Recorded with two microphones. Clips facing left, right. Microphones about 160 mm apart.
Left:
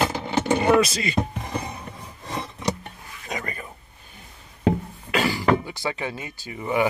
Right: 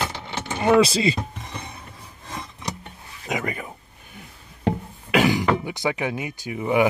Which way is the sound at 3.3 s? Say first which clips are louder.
Right 5 dB; 15° right (ahead or behind).